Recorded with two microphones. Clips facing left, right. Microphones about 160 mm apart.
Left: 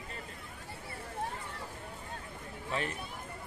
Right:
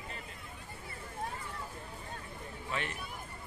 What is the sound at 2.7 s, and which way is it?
Speech, 35° left (ahead or behind).